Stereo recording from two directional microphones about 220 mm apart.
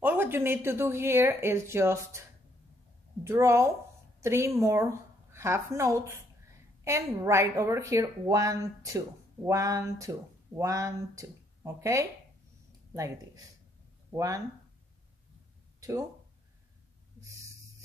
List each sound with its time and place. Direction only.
0.0 s a woman's voice: 10° right (ahead or behind)
3.3 s a woman's voice: 15° right (ahead or behind)
15.8 s speech: 15° right (ahead or behind)